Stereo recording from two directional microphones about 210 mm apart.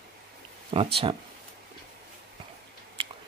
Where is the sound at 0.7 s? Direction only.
30° right (ahead or behind).